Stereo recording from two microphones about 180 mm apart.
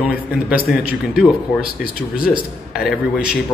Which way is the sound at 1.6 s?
55° left (ahead or behind).